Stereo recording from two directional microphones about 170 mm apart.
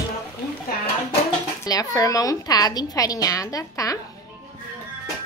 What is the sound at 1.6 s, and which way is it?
A woman's voice, 20° left (ahead or behind).